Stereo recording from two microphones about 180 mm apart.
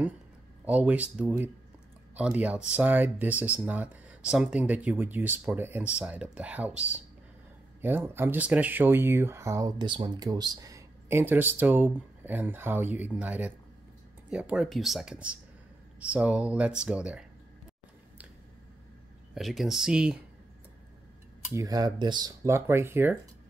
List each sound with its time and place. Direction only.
0.7 s speech: 10° right (ahead or behind)
19.3 s speech: centre (ahead or behind)
21.5 s speech: 20° right (ahead or behind)